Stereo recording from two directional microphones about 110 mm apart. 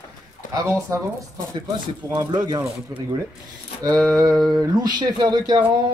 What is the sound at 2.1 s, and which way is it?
Speech, 35° right (ahead or behind).